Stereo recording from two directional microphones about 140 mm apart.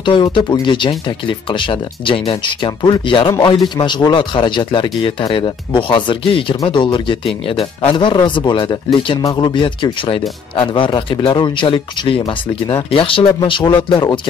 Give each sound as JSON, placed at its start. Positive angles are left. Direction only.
{"t": 0.0, "sound": "a man's voice", "side_deg": 35}